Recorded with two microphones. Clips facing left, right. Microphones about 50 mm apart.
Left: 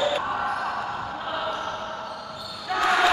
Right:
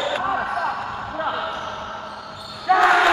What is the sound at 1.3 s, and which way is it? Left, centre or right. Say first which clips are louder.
Basketball bounce: right 2 dB; centre.